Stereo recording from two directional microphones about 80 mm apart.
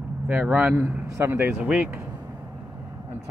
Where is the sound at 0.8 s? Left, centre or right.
Right.